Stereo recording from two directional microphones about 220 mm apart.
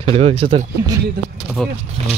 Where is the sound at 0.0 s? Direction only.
25° right (ahead or behind).